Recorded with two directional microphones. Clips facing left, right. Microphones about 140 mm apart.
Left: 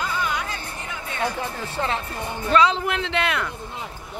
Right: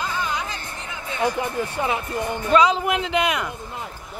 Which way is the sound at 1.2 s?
15° right (ahead or behind).